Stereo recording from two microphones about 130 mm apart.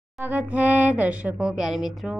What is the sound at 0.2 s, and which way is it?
Speech, 10° right (ahead or behind).